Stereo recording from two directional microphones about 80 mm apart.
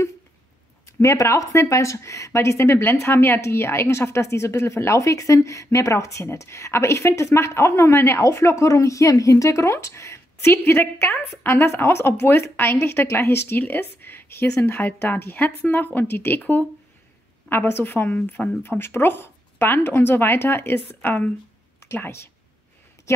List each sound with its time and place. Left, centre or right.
1.0 s a woman's voice: left